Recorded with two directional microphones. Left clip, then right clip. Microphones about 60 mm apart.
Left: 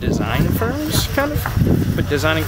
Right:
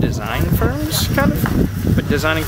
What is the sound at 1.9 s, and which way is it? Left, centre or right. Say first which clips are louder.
Speech: right 3 dB; centre.